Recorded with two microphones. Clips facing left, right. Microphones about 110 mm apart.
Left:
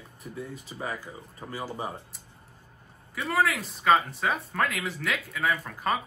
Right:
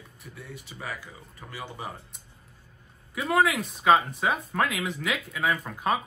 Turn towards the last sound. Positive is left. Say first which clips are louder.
# right 1 dB
turn(degrees=0)  # may be behind; listen again after turning